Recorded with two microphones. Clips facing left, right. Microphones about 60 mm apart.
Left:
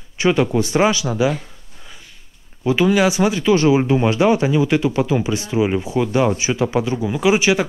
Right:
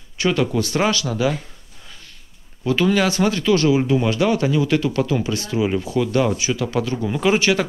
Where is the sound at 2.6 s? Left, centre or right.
Centre.